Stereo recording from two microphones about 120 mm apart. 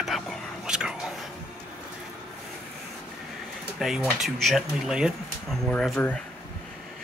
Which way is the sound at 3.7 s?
Centre (ahead or behind).